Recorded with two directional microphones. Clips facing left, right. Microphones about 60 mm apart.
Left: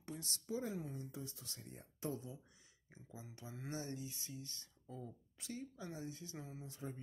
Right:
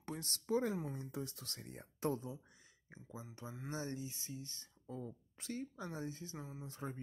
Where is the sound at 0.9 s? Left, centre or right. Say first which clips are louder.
Right 4 dB; right.